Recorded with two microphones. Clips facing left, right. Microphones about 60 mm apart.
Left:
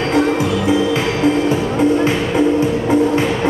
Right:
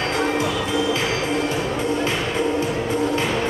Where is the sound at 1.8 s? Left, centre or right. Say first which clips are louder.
Left 8 dB; left.